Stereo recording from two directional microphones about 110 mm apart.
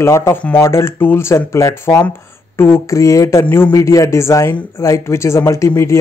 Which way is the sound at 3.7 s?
30° left (ahead or behind).